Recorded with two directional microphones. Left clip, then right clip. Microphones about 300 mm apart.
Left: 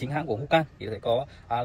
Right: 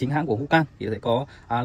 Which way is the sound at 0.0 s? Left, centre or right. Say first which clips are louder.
Right 5 dB; right.